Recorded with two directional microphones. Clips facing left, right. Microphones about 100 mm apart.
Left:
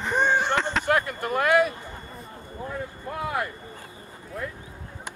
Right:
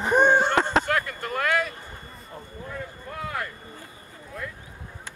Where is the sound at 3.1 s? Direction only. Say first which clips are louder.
Left 4 dB; 20° left (ahead or behind).